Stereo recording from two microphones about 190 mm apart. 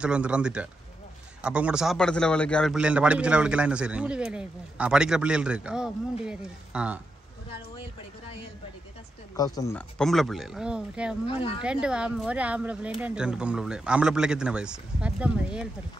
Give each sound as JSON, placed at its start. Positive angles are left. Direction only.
{"t": 0.0, "sound": "a man's voice", "side_deg": -5}
{"t": 9.4, "sound": "speech", "side_deg": 20}
{"t": 9.8, "sound": "a man's voice", "side_deg": 5}
{"t": 11.2, "sound": "speech", "side_deg": 25}
{"t": 11.6, "sound": "a man's voice", "side_deg": -5}